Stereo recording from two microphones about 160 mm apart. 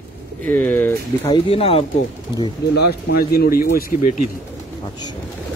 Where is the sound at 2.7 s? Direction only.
85° left; by 3.8 s 65° left (ahead or behind).